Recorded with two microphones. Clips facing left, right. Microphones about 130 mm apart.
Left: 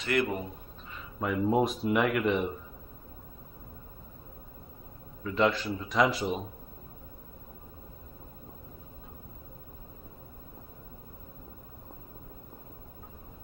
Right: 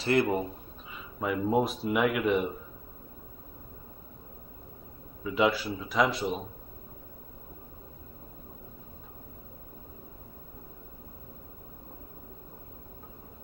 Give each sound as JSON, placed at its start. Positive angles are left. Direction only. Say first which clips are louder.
{"t": 0.0, "sound": "a man's voice", "louder": "right 3 dB", "side_deg": -30}
{"t": 0.9, "sound": "speech", "louder": "even", "side_deg": 0}
{"t": 5.2, "sound": "speech", "louder": "right 1 dB", "side_deg": -10}